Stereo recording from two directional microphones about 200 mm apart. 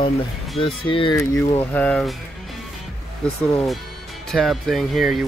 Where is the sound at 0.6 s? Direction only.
25° left (ahead or behind).